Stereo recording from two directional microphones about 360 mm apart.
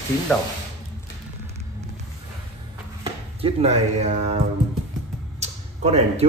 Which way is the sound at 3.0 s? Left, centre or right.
Centre.